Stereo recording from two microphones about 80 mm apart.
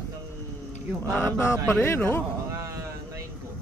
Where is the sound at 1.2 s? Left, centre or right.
Left.